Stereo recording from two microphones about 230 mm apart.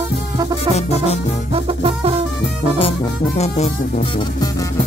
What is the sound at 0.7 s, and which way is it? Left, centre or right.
Music, left.